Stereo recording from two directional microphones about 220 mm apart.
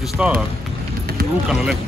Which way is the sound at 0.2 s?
5° right (ahead or behind).